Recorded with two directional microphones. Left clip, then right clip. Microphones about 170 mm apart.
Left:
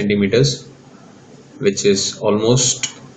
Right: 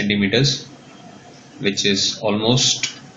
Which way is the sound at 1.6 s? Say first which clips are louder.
Left 3 dB; 5° left (ahead or behind).